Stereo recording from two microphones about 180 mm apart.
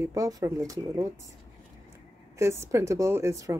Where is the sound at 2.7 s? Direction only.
15° right (ahead or behind).